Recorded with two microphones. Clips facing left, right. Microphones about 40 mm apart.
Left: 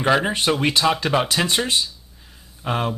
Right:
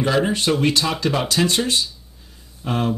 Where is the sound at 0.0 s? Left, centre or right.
Left.